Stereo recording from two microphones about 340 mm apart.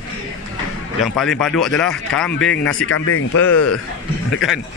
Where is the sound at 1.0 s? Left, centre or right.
Centre.